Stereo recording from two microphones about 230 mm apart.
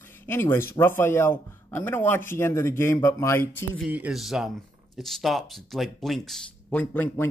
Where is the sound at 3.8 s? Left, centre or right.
Centre.